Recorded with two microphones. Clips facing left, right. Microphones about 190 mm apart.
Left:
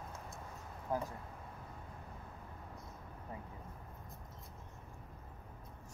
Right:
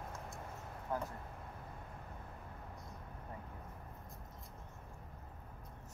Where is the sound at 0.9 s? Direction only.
15° left (ahead or behind).